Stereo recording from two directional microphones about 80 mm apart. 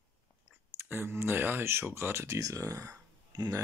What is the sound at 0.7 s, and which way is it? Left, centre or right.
Speech, right.